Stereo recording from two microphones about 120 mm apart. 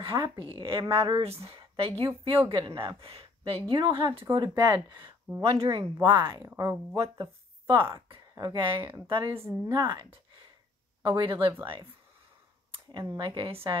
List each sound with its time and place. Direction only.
0.0 s a woman's voice: 45° right (ahead or behind)
5.4 s a woman's voice: 55° right (ahead or behind)
5.9 s speech: 40° right (ahead or behind)
6.4 s speech: 25° right (ahead or behind)
7.2 s a woman's voice: 45° right (ahead or behind)
12.7 s a sound: 40° right (ahead or behind)
13.2 s a woman's voice: 45° right (ahead or behind)